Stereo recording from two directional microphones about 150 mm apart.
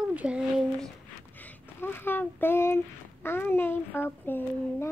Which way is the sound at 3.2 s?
15° left (ahead or behind).